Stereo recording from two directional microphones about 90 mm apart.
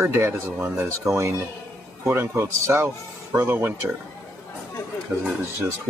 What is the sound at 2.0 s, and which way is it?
A man's voice, 30° right (ahead or behind).